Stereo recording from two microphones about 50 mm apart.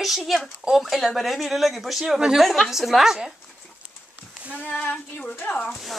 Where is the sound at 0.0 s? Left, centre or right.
Centre.